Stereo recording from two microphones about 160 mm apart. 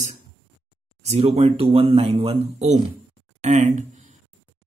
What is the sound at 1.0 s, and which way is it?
Speech, 40° right (ahead or behind).